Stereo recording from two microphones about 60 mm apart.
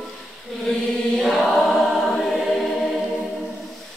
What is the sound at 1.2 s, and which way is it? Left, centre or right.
Chant, centre.